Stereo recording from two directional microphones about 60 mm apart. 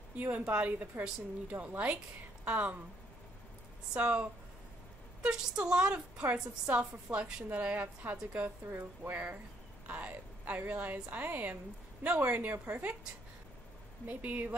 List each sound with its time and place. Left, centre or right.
0.2 s a woman's voice: right
3.9 s a woman's voice: right
14.0 s a woman's voice: right